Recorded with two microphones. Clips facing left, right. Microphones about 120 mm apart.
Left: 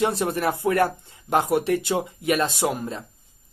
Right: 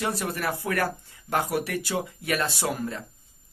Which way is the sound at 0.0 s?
25° left (ahead or behind).